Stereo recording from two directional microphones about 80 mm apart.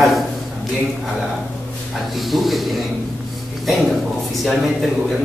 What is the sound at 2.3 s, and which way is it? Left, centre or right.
Speech, centre.